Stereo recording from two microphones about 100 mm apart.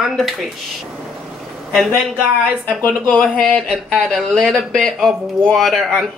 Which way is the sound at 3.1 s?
10° left (ahead or behind).